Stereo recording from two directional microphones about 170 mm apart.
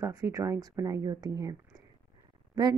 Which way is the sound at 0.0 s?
20° right (ahead or behind).